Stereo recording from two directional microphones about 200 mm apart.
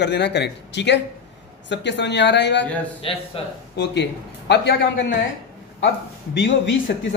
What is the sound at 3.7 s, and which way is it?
Speech, 60° left (ahead or behind).